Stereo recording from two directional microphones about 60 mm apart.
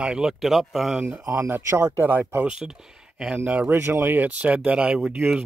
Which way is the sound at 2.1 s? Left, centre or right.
Right.